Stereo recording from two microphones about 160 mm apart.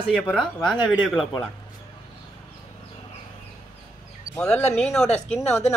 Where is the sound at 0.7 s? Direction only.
30° left (ahead or behind).